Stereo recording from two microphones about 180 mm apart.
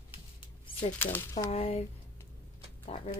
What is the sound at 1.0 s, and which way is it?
Speech, 10° left (ahead or behind).